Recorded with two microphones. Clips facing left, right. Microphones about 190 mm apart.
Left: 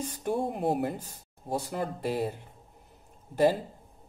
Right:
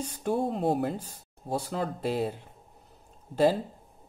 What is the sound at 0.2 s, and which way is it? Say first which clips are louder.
Speech: right 2 dB; 15° left (ahead or behind).